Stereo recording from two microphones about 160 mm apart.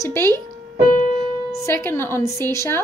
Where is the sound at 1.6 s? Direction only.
15° left (ahead or behind).